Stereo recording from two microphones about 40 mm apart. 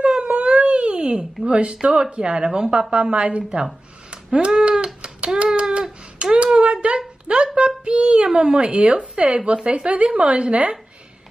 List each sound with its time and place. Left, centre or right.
0.0 s speech: right
4.1 s a sound: right
7.0 s a woman's voice: right